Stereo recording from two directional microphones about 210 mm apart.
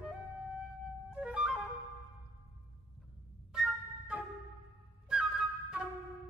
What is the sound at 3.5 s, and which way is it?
Music, 5° right (ahead or behind).